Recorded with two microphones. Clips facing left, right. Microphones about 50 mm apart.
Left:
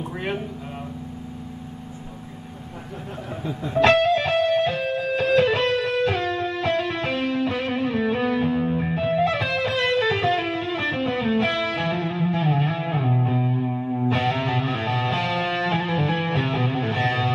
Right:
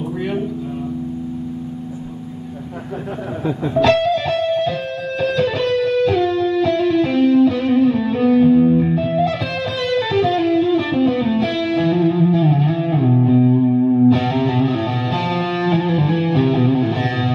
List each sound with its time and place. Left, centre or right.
3.8 s music: left
7.6 s music: centre; by 12.9 s left
12.9 s music: centre
13.5 s music: centre
14.0 s music: left